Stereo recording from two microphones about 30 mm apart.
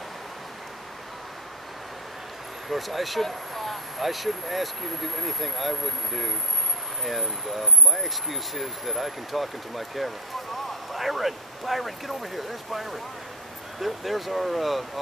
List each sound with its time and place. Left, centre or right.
2.7 s speech: centre